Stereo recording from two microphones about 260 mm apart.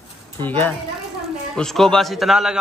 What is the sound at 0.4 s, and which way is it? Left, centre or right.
A man's voice, centre.